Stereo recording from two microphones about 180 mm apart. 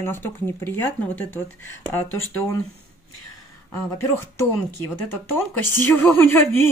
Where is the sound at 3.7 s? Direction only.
10° left (ahead or behind).